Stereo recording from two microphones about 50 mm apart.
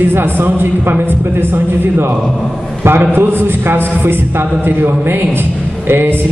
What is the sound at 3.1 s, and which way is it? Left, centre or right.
A man's voice, right.